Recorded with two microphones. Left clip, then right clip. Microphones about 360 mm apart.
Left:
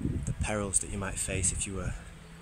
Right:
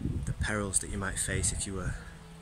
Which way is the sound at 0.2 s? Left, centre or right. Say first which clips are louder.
Right 2 dB; centre.